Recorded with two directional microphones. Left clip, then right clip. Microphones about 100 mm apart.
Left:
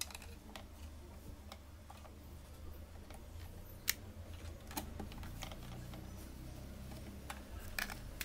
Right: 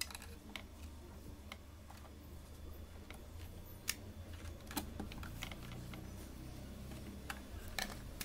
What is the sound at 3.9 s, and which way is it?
Tick-tock, 15° left (ahead or behind).